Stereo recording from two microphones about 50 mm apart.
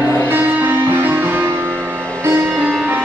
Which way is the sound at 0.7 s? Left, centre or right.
Right.